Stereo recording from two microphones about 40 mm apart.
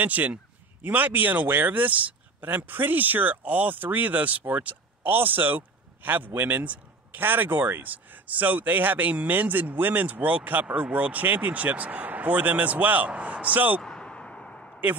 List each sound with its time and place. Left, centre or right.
0.0 s speech: right
2.4 s a man's voice: right
10.1 s speech: right
13.8 s a sound: left